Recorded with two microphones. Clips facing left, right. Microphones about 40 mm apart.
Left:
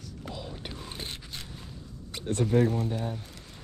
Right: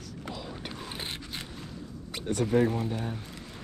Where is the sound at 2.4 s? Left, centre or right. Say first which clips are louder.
Even; centre.